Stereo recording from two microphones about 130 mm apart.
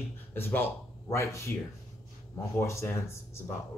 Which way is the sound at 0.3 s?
15° left (ahead or behind).